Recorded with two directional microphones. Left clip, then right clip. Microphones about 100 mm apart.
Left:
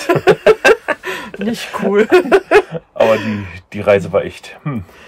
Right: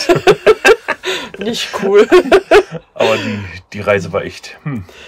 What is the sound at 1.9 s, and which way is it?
Speech, 20° right (ahead or behind).